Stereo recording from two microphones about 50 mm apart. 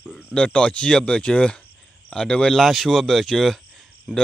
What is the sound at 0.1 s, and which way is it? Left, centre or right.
Speech, centre.